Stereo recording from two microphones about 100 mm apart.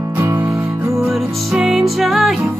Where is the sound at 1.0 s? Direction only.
5° right (ahead or behind).